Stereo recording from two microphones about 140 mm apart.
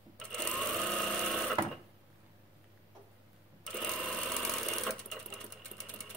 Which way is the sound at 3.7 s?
5° left (ahead or behind).